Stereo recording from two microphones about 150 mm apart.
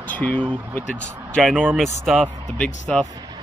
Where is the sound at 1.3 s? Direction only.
5° left (ahead or behind).